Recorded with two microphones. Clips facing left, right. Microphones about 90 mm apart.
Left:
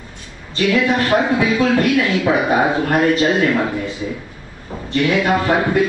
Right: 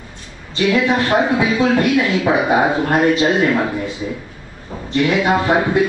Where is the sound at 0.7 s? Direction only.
15° right (ahead or behind).